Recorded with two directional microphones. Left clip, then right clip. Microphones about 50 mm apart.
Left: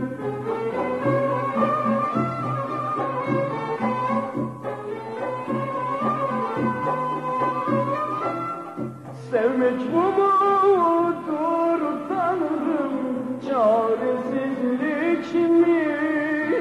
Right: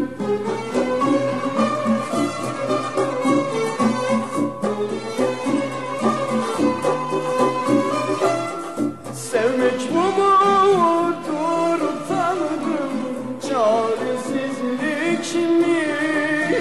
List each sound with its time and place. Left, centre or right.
9.3 s music: left
11.5 s music: left